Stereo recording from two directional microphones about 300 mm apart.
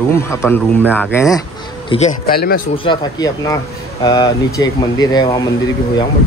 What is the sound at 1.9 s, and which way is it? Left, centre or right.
Speech, left.